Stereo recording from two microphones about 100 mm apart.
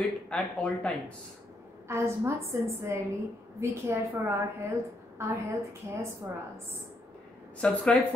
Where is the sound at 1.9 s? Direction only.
25° right (ahead or behind).